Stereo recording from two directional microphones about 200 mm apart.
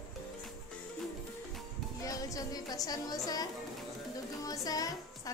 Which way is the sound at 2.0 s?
15° left (ahead or behind).